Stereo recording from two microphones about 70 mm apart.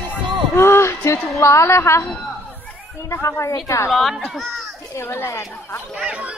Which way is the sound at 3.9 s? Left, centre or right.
Centre.